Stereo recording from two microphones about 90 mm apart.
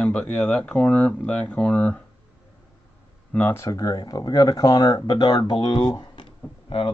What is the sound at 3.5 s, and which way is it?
Speech, 35° left (ahead or behind).